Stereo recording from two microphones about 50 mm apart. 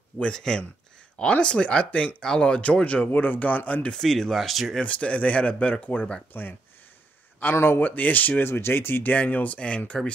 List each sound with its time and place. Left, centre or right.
0.3 s speech: centre
2.2 s speech: centre
2.6 s speech: left
3.9 s speech: centre
4.8 s speech: left
7.5 s speech: left
7.8 s speech: left
8.5 s speech: left
9.1 s speech: left